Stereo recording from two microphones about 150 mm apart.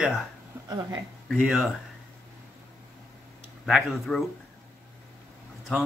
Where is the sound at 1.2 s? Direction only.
Centre (ahead or behind).